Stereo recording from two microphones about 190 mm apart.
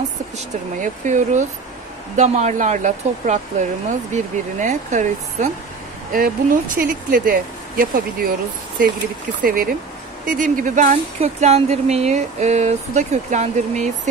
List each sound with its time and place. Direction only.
0.7 s speech: 40° right (ahead or behind)
9.4 s speech: 50° right (ahead or behind)